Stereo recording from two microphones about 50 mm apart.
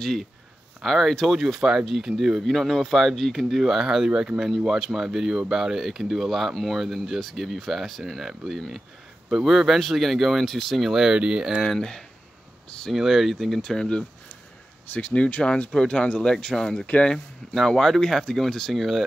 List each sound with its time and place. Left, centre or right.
0.0 s speech: centre
11.6 s speech: centre
12.9 s speech: centre
13.6 s speech: centre
14.9 s speech: left; by 16.8 s centre
16.8 s speech: left
17.6 s speech: centre